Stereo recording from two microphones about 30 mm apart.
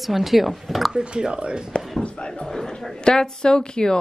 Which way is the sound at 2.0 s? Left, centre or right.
Left.